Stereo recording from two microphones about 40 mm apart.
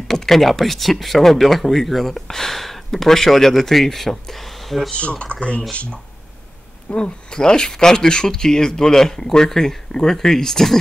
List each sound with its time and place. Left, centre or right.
0.1 s speech: centre
4.9 s speech: left; by 10.8 s centre